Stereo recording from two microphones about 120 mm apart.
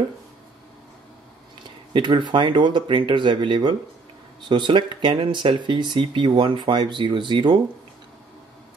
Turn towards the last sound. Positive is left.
turn(degrees=-40)  # may be behind; listen again after turning